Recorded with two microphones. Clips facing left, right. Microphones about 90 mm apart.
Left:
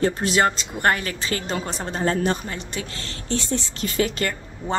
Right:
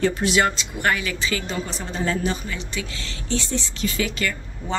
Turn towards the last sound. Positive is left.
turn(degrees=45)  # may be behind; listen again after turning